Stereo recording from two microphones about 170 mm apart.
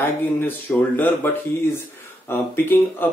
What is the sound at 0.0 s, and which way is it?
Speech, 10° left (ahead or behind).